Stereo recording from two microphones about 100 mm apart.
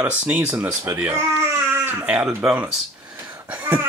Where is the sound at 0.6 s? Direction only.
25° right (ahead or behind).